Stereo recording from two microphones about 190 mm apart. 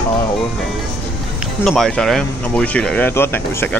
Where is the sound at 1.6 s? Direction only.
Centre (ahead or behind).